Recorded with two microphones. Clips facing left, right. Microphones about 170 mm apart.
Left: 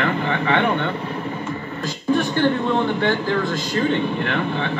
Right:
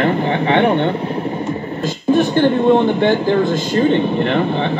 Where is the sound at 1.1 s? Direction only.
30° right (ahead or behind).